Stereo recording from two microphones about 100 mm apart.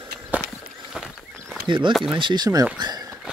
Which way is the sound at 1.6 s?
55° right (ahead or behind).